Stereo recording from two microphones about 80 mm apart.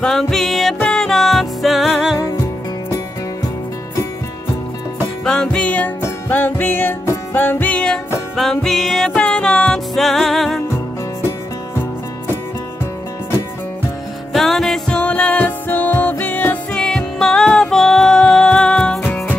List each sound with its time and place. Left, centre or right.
0.0 s music: centre
2.2 s music: left
5.2 s music: centre
14.3 s music: centre; by 16.5 s left
16.7 s music: centre